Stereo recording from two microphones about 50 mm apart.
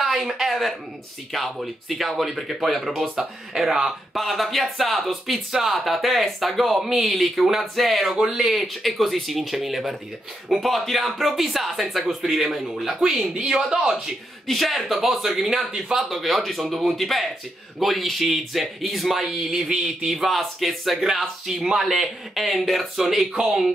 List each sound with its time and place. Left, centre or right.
0.0 s speech: centre
13.3 s speech: centre
14.5 s speech: centre